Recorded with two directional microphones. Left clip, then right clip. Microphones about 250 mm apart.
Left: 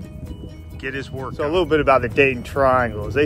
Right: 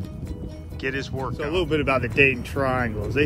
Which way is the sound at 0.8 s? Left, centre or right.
Centre.